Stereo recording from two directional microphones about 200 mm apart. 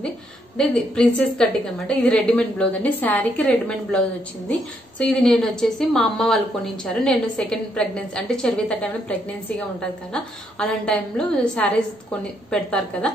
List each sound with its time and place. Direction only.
0.6 s a woman's voice: 5° left (ahead or behind)
9.8 s a woman's voice: 5° left (ahead or behind)